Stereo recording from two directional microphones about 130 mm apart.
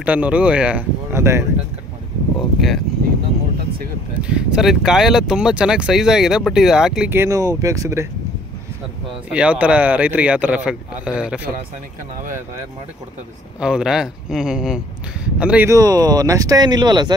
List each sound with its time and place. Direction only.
0.0 s speech: 10° right (ahead or behind)
1.1 s speech: 20° right (ahead or behind)
2.3 s speech: centre (ahead or behind)
4.2 s speech: 5° right (ahead or behind)
7.1 s speech: 20° right (ahead or behind)
9.3 s speech: 10° right (ahead or behind)
13.6 s speech: 5° right (ahead or behind)
15.7 s speech: 30° right (ahead or behind)